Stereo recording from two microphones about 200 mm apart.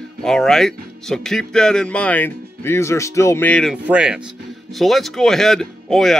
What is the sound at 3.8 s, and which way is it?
Speech, 5° right (ahead or behind).